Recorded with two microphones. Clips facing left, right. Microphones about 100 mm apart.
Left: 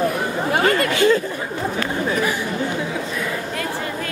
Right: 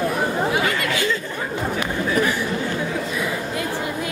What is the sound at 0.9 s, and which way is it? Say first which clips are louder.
Speech: left 7 dB; 40° left (ahead or behind).